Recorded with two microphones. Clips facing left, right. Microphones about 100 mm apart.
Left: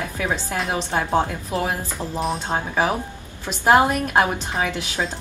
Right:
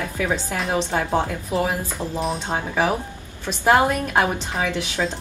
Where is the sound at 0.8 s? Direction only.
15° left (ahead or behind).